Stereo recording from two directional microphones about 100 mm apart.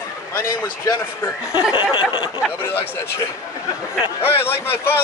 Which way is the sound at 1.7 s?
60° left (ahead or behind).